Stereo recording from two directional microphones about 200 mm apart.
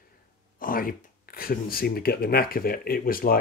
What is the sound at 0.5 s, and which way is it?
Speech, 45° left (ahead or behind).